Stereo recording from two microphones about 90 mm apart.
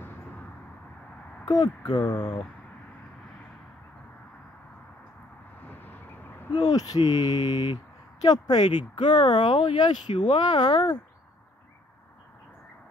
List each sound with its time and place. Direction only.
1.4 s speech: 50° left (ahead or behind)
5.7 s vehicle: 20° left (ahead or behind)
6.5 s speech: 45° left (ahead or behind)